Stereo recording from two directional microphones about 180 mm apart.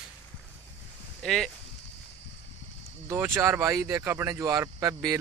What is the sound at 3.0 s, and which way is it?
Speech, 15° right (ahead or behind).